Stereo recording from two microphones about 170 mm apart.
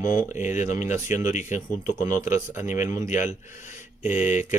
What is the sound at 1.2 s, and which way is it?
Speech, 45° left (ahead or behind).